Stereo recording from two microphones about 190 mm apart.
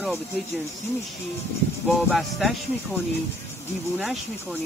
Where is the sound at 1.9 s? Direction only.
Centre (ahead or behind).